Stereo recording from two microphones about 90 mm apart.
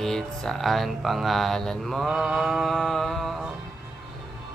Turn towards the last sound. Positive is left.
turn(degrees=5)  # may be behind; listen again after turning